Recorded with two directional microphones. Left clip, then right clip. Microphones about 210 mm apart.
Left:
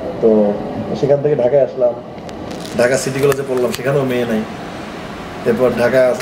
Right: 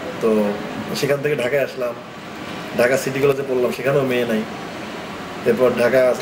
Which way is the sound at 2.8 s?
Centre (ahead or behind).